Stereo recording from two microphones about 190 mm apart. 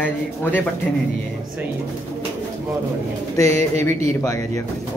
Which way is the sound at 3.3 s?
15° left (ahead or behind).